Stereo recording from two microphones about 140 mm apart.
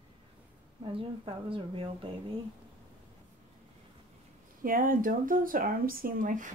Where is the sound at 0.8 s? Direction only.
40° right (ahead or behind).